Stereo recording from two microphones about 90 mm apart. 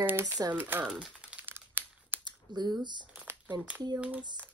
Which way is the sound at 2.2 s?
50° right (ahead or behind).